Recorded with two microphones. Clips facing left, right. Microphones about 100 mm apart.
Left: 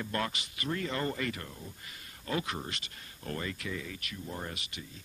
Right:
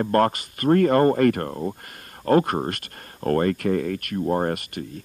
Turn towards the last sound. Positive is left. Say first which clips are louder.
# right 17 dB
turn(degrees=-55)  # may be behind; listen again after turning